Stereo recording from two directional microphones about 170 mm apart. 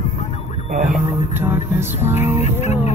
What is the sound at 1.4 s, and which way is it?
Music, 15° right (ahead or behind).